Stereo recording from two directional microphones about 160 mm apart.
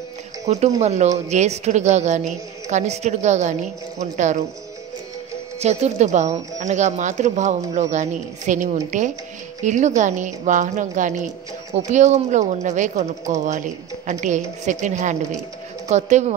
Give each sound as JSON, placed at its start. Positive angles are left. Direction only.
{"t": 0.7, "sound": "a woman's voice", "side_deg": -45}
{"t": 5.6, "sound": "a woman's voice", "side_deg": -45}